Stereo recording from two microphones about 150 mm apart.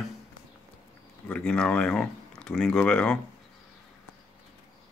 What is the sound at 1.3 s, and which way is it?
Speech, 5° left (ahead or behind).